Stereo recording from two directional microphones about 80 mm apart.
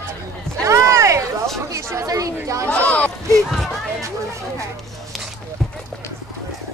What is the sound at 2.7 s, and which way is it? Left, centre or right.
Speech, centre.